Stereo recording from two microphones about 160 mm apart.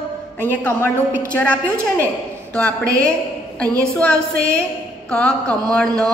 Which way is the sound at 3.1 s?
5° left (ahead or behind).